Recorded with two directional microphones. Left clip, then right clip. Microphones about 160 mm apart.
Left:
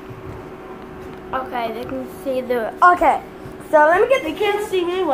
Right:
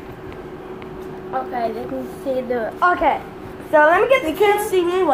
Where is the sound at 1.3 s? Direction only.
15° left (ahead or behind).